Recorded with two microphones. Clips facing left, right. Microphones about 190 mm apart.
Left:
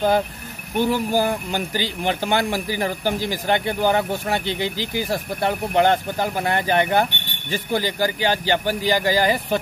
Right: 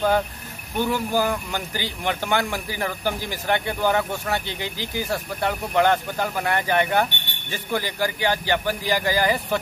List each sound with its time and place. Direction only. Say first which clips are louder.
0.7 s speech: left 3 dB; 30° left (ahead or behind)